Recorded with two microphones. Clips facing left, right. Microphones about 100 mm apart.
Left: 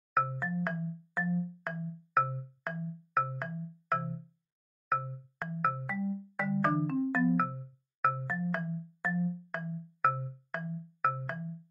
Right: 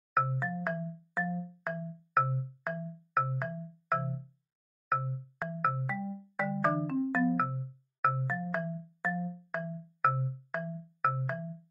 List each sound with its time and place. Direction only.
0.1 s music: centre (ahead or behind)